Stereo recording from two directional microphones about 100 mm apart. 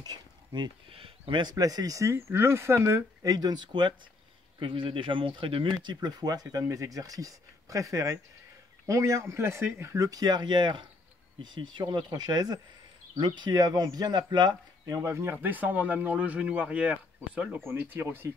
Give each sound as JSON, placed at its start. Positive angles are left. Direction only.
{"t": 0.0, "sound": "a sound", "side_deg": -45}
{"t": 0.8, "sound": "speech", "side_deg": -65}
{"t": 1.4, "sound": "speech", "side_deg": -40}
{"t": 14.9, "sound": "speech", "side_deg": -30}
{"t": 15.3, "sound": "speech", "side_deg": -15}
{"t": 17.6, "sound": "speech", "side_deg": -20}